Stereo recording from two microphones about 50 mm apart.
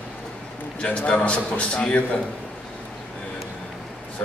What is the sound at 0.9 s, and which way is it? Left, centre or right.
A man's voice, left.